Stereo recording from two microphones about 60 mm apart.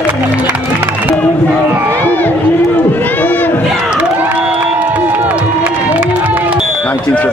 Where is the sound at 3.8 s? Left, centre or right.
Right.